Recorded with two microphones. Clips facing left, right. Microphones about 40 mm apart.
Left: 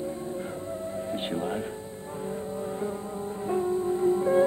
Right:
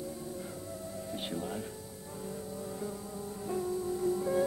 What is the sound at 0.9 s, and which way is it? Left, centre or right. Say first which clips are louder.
Speech: left 6 dB; left.